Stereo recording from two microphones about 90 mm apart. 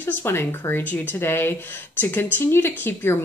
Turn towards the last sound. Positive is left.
turn(degrees=25)  # may be behind; listen again after turning